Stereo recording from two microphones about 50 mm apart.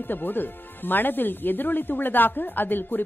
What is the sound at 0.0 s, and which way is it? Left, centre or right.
A woman's voice, left.